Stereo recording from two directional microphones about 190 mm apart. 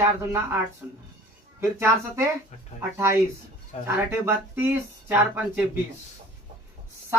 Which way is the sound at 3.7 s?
35° left (ahead or behind).